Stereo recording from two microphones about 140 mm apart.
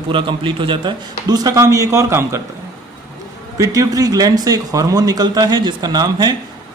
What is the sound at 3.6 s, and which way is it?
Speech, 25° right (ahead or behind).